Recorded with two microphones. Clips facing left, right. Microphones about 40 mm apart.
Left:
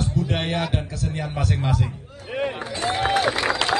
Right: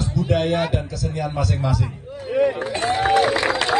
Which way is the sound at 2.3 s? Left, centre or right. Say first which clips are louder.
Right 7 dB; left.